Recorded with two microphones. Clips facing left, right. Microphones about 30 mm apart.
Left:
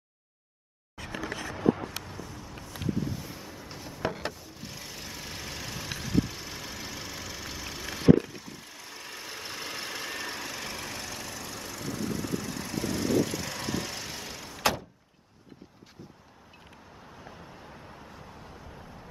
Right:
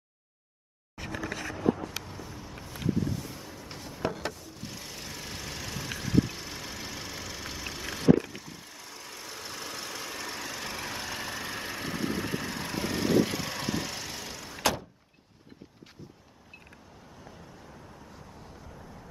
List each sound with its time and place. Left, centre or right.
1.9 s vehicle: centre
2.9 s boat: centre
3.6 s a sound: centre
4.2 s vehicle: centre
10.7 s vehicle: centre
17.2 s vehicle: centre